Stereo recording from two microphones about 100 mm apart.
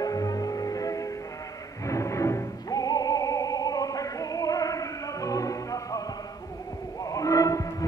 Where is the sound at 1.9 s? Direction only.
30° left (ahead or behind).